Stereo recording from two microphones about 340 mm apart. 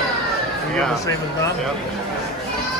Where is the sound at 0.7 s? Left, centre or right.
Centre.